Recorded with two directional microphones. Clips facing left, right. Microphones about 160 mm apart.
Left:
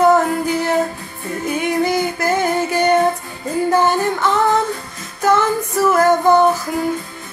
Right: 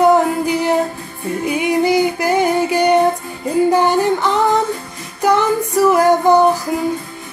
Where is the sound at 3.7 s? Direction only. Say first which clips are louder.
Right 2 dB; 15° right (ahead or behind).